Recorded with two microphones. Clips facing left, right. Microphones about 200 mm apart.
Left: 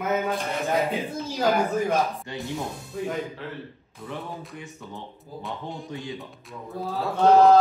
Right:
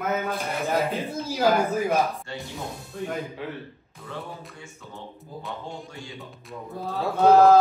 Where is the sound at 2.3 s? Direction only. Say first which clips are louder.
Left 1 dB; 15° left (ahead or behind).